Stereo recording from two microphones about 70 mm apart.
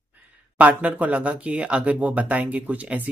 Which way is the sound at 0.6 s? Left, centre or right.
Right.